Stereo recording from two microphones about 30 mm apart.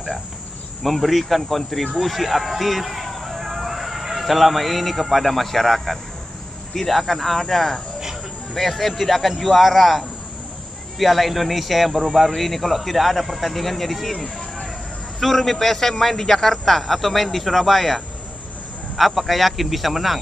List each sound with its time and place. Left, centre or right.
0.8 s a man's voice: centre
14.1 s a sound: left
15.1 s a man's voice: centre